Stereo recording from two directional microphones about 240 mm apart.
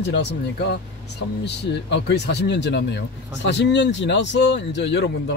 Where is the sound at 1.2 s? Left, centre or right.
Left.